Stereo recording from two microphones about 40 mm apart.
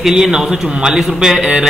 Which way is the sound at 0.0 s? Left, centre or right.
Centre.